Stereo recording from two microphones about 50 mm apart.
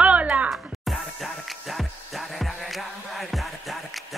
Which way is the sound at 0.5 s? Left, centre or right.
Centre.